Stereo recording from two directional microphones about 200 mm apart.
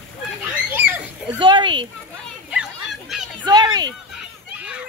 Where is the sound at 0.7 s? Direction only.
10° right (ahead or behind).